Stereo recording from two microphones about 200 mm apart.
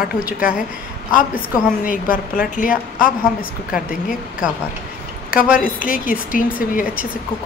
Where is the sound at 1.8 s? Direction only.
45° left (ahead or behind).